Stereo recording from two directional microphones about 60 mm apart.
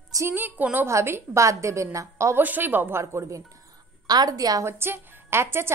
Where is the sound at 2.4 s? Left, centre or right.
Right.